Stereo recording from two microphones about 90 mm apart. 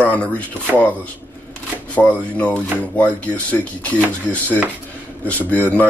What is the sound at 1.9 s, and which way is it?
Speech, 15° left (ahead or behind).